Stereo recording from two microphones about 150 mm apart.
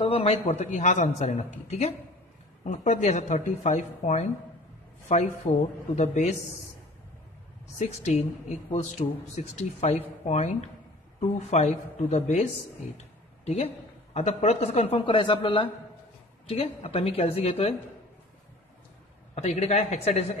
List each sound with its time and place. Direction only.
0.0 s a man's voice: 40° left (ahead or behind)
0.5 s speech: 50° left (ahead or behind)
7.8 s speech: 50° left (ahead or behind)
14.1 s speech: 45° left (ahead or behind)
19.3 s speech: 50° left (ahead or behind)